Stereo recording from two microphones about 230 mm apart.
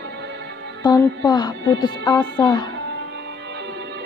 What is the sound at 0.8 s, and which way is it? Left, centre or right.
A woman's voice, centre.